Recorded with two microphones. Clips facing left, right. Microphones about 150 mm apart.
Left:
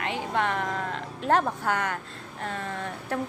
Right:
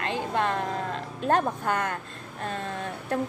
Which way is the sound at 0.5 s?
20° right (ahead or behind).